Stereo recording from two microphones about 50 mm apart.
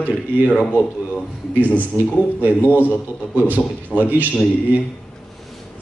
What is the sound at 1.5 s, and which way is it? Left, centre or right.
Speech, right.